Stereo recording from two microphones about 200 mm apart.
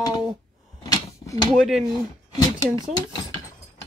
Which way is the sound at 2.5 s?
15° left (ahead or behind).